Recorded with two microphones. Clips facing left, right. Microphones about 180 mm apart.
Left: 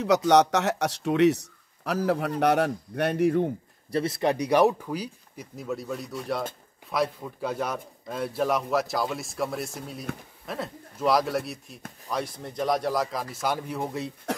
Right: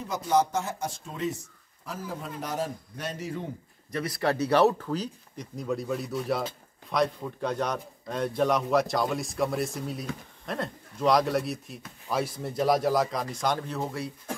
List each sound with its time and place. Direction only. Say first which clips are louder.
0.0 s a man's voice: left 6 dB; 80° left; by 3.4 s 60° left (ahead or behind)
3.9 s a man's voice: left 3 dB; 25° left (ahead or behind)